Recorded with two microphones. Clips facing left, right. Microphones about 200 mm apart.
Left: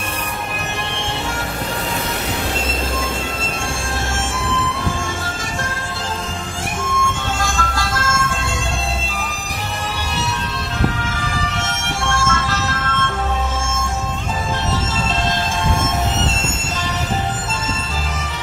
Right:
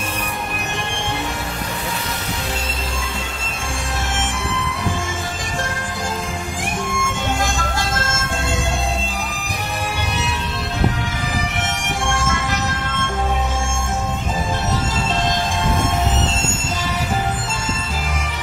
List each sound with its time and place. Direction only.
7.0 s music: 15° right (ahead or behind)
11.5 s music: 15° right (ahead or behind)